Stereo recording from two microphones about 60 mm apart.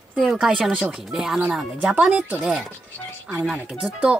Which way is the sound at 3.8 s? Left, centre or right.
Centre.